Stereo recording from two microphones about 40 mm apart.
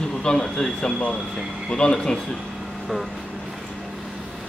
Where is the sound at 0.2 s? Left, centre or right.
Centre.